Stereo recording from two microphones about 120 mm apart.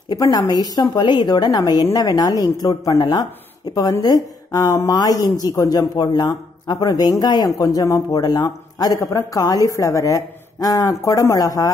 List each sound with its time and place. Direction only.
0.1 s a man's voice: 30° left (ahead or behind)